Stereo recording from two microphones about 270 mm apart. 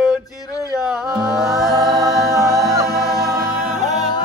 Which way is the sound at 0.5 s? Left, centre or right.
Centre.